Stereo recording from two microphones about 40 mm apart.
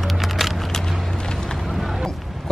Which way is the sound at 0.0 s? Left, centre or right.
Centre.